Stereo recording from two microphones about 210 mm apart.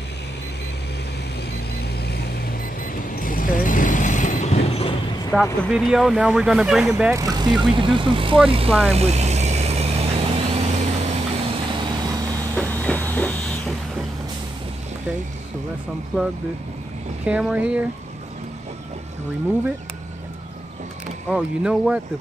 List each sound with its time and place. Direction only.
2.0 s vehicle: 50° left (ahead or behind); by 5.3 s 25° left (ahead or behind)
5.3 s speech: centre (ahead or behind); by 8.7 s 25° right (ahead or behind)
8.9 s vehicle: 30° right (ahead or behind)
12.5 s printer: 5° left (ahead or behind)
17.3 s speech: 5° right (ahead or behind)
21.3 s speech: 5° right (ahead or behind)